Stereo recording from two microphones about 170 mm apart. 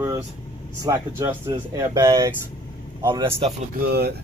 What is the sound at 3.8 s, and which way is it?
Speech, 65° right (ahead or behind).